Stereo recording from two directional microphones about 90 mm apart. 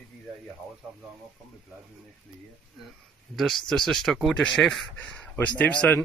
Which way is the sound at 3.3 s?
5° left (ahead or behind).